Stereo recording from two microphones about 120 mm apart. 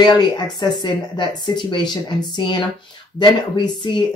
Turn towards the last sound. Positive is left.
turn(degrees=40)  # may be behind; listen again after turning